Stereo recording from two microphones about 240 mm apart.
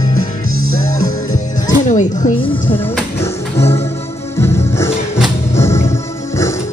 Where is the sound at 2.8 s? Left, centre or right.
Centre.